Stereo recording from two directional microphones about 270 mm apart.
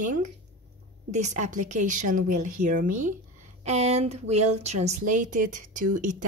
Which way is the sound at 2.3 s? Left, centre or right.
Right.